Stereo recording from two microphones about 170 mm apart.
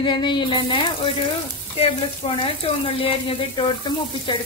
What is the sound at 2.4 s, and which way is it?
Speech, 35° left (ahead or behind).